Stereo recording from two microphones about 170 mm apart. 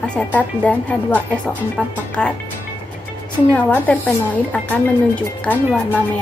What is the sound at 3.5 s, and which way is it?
Speech, 10° left (ahead or behind).